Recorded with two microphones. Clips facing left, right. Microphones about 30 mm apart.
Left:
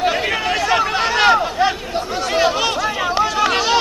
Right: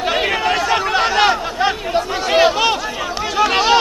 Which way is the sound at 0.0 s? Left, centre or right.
Centre.